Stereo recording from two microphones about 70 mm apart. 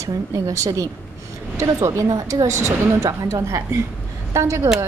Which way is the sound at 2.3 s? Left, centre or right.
Right.